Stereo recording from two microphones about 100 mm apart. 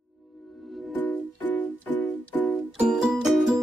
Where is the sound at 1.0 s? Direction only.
20° left (ahead or behind).